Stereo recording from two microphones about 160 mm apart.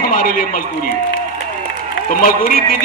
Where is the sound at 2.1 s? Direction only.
60° left (ahead or behind).